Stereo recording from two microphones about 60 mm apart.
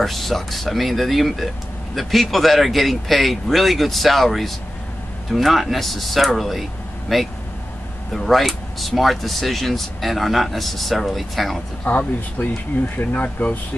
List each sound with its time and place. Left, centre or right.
0.0 s speech: centre
11.8 s speech: left